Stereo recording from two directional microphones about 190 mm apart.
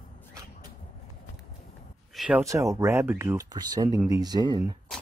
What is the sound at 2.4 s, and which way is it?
Speech, 15° right (ahead or behind).